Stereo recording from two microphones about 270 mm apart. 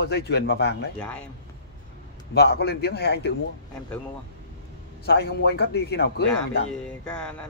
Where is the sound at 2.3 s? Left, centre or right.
Left.